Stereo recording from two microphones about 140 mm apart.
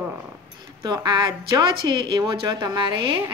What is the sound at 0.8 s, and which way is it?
A woman's voice, 30° right (ahead or behind).